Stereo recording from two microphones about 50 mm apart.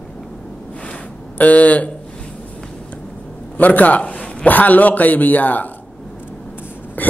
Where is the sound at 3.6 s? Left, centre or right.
Left.